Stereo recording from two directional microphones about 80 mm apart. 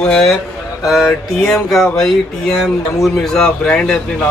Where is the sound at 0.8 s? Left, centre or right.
Centre.